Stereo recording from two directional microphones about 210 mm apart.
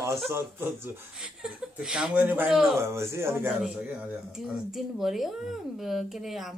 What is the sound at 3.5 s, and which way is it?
A woman's voice, centre (ahead or behind).